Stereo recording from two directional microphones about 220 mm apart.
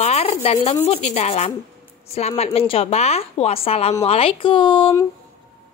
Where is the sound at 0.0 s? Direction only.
30° left (ahead or behind).